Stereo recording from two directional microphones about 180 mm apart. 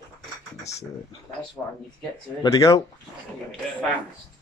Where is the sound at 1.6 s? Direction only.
10° left (ahead or behind).